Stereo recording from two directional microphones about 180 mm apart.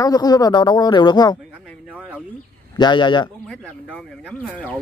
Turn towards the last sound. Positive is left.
turn(degrees=10)  # may be behind; listen again after turning